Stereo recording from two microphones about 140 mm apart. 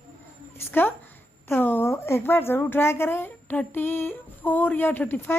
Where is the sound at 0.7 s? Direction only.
15° left (ahead or behind).